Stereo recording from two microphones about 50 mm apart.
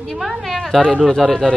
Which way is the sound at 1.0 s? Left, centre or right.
Centre.